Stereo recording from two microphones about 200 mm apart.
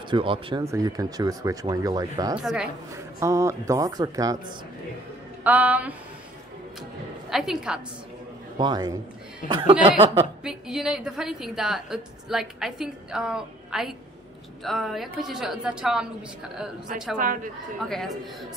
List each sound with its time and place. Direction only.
0.1 s speech: 25° right (ahead or behind)
2.3 s a woman's voice: 5° right (ahead or behind)
3.2 s speech: 15° right (ahead or behind)
5.4 s speech: 10° right (ahead or behind)
7.2 s a woman's voice: centre (ahead or behind)
8.5 s speech: 20° right (ahead or behind)
10.4 s a woman's voice: 5° right (ahead or behind)
17.2 s speech: 40° right (ahead or behind)
17.8 s a woman's voice: centre (ahead or behind)